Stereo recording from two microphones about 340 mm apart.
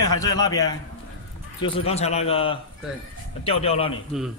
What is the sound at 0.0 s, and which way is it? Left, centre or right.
Speech, centre.